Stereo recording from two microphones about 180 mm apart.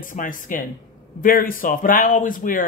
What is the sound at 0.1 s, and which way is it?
Speech, 45° left (ahead or behind).